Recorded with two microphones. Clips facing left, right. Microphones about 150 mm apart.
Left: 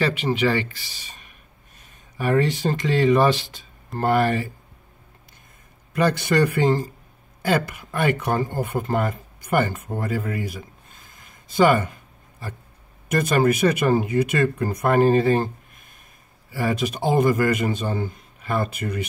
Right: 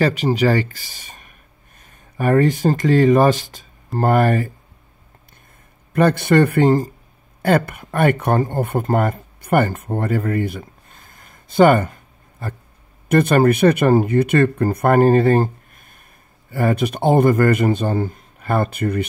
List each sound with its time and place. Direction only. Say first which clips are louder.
0.0 s speech: right 4 dB; 40° right (ahead or behind)
5.9 s speech: right 5 dB; 55° right (ahead or behind)